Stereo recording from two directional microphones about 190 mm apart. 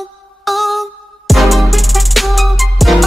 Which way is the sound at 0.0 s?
Centre (ahead or behind).